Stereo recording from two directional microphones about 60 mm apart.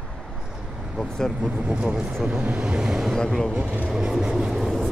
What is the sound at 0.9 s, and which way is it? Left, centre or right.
Speech, centre.